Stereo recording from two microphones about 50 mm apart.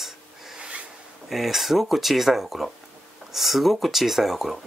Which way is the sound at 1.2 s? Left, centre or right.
Centre.